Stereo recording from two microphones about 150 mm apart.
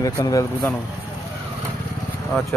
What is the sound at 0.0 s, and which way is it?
Speech, 20° left (ahead or behind).